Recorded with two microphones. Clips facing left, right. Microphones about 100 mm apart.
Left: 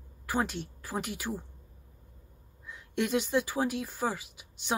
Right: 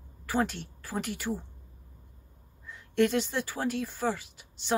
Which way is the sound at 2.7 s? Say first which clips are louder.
Right 4 dB; 5° left (ahead or behind).